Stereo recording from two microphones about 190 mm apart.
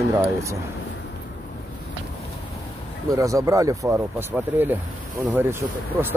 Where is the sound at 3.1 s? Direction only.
15° right (ahead or behind).